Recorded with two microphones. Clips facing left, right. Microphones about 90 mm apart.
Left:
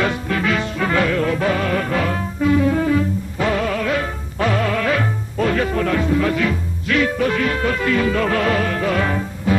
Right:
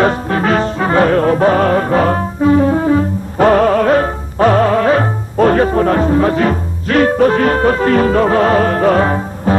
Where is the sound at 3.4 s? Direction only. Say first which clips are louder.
Right 11 dB; 50° right (ahead or behind).